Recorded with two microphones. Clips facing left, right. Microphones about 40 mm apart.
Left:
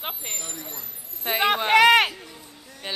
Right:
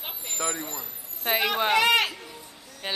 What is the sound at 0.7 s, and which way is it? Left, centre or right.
Speech, centre.